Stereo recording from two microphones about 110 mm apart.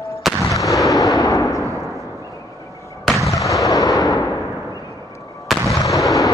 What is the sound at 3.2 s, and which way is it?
Artillery fire, 30° left (ahead or behind).